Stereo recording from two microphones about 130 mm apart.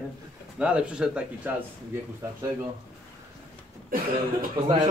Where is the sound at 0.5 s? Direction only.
10° right (ahead or behind).